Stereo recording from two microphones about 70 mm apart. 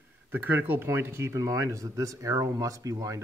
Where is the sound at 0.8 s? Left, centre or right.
Right.